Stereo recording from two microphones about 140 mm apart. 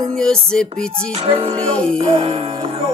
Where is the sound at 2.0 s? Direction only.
45° right (ahead or behind).